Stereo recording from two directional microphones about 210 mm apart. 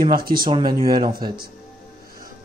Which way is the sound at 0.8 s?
20° right (ahead or behind).